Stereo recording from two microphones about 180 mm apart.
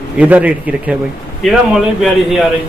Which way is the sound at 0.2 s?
10° right (ahead or behind).